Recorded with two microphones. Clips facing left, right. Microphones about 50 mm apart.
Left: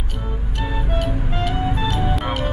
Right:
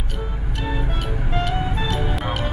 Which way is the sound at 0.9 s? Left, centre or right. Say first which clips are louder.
Left 2 dB; centre.